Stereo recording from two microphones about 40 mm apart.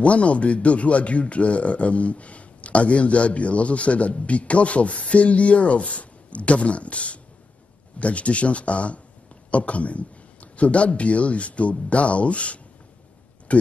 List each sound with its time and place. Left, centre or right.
0.0 s speech: left